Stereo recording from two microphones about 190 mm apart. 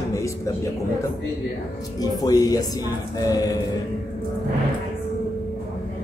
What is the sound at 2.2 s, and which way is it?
Speech, 20° left (ahead or behind).